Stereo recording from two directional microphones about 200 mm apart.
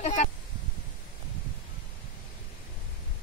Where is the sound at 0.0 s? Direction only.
35° left (ahead or behind).